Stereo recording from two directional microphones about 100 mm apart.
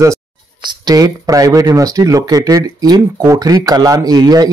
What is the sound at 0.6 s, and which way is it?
Speech, 40° right (ahead or behind).